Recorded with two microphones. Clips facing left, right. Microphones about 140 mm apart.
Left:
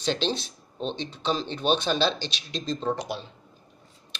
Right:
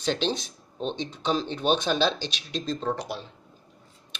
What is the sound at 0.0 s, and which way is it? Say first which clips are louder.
Speech: even; 10° right (ahead or behind).